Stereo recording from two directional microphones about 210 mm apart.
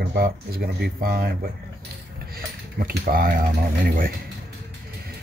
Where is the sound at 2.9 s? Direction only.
45° right (ahead or behind).